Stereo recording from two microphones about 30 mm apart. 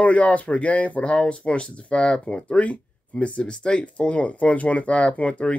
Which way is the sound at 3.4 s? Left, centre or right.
Left.